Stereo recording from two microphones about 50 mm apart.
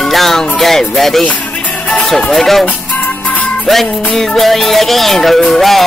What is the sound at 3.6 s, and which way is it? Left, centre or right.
Music, centre.